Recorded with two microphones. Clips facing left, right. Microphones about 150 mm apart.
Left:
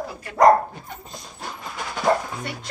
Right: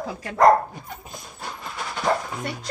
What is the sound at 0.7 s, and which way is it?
Dog, 5° right (ahead or behind).